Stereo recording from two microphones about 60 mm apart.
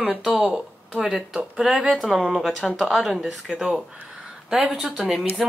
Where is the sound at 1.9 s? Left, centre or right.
Centre.